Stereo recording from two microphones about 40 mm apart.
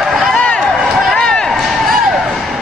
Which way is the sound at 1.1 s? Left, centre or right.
Centre.